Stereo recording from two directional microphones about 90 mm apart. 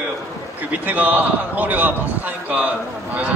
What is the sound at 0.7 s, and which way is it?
A man's voice, 20° right (ahead or behind).